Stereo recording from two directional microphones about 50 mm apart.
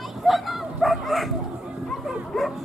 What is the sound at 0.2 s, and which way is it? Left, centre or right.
Dog, centre.